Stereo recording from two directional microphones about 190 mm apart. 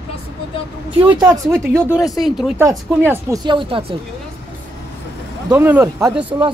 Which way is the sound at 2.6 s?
15° right (ahead or behind).